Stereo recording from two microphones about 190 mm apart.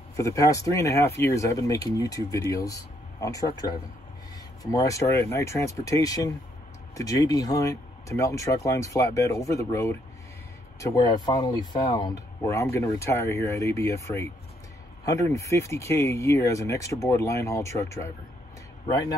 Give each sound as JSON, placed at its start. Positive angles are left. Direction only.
{"t": 0.1, "sound": "speech", "side_deg": 15}